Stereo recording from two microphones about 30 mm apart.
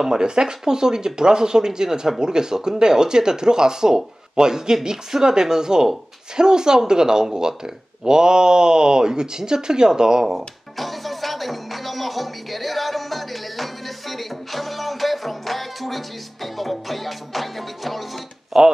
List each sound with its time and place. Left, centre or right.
0.0 s speech: right
10.8 s music: centre
18.5 s a sound: centre